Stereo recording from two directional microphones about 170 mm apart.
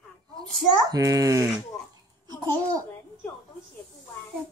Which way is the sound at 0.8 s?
20° right (ahead or behind).